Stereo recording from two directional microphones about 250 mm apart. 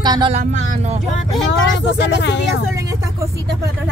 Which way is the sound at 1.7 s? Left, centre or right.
Left.